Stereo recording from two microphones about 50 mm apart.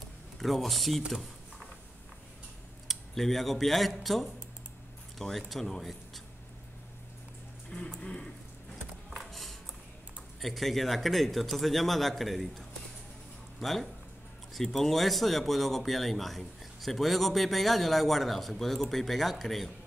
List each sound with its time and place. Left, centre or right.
0.4 s speech: centre
2.9 s speech: centre
5.5 s speech: centre
8.0 s a sound: left
9.2 s a sound: centre
10.4 s speech: centre